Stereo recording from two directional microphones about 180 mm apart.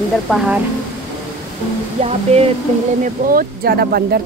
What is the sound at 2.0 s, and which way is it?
Speech, 35° right (ahead or behind).